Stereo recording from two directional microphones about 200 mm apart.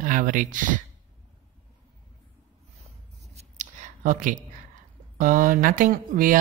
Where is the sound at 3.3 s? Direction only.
35° right (ahead or behind).